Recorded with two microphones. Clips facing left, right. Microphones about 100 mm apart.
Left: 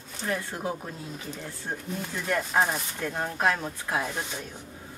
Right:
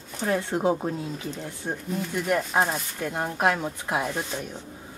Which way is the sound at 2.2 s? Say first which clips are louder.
Right 1 dB; 15° right (ahead or behind).